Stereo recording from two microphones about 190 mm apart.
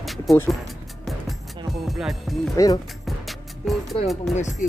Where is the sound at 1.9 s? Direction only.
Centre (ahead or behind).